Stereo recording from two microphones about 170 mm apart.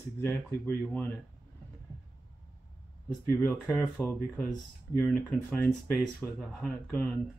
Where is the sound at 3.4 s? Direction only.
20° left (ahead or behind).